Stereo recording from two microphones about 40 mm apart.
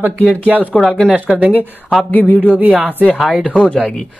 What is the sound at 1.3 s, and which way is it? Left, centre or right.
Speech, centre.